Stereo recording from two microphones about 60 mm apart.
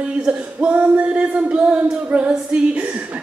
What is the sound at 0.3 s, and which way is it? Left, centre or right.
Speech, right.